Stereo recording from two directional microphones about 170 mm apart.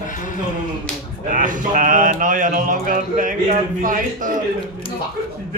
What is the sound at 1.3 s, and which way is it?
Speech, 50° right (ahead or behind).